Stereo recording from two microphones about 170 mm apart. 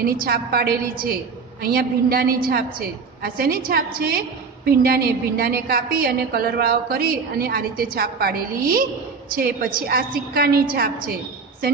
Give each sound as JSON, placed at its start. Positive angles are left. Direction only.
{"t": 0.0, "sound": "a woman's voice", "side_deg": -60}